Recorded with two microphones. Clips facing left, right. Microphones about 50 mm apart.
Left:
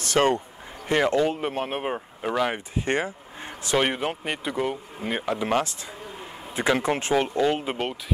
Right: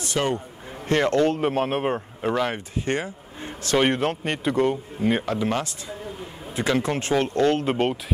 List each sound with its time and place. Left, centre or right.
0.2 s speech: left
0.8 s speech: centre
2.8 s vehicle: left
3.7 s speech: centre
5.2 s speech: centre
7.7 s speech: centre